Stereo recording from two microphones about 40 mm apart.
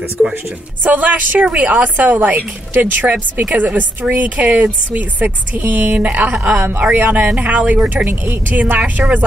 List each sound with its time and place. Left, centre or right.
0.2 s a woman's voice: centre
0.8 s a woman's voice: right
1.4 s a woman's voice: right